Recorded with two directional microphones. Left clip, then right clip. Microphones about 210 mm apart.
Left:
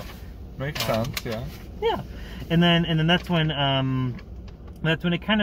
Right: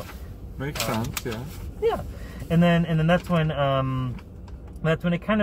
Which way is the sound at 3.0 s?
20° left (ahead or behind).